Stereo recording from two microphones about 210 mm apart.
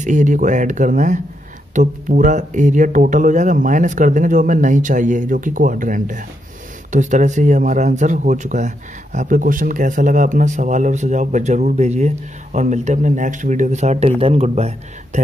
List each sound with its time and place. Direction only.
0.0 s speech: 35° right (ahead or behind)